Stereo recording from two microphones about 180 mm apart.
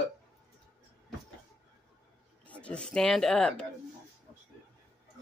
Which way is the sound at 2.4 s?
5° left (ahead or behind).